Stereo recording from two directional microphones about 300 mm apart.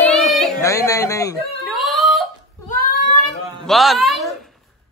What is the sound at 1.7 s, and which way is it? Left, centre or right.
Whimper, centre.